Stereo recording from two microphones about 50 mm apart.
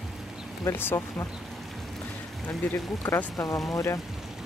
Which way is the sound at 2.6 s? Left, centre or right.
Left.